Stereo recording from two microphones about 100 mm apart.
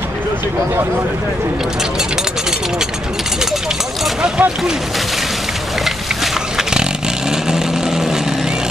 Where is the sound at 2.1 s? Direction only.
5° right (ahead or behind).